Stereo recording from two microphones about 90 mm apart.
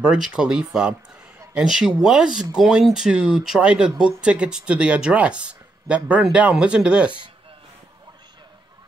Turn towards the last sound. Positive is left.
turn(degrees=-10)  # may be behind; listen again after turning